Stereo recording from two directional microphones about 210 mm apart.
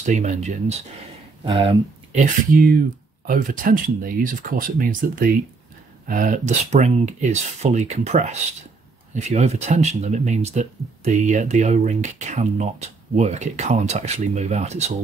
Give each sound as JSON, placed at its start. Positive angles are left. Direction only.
{"t": 0.0, "sound": "speech", "side_deg": -35}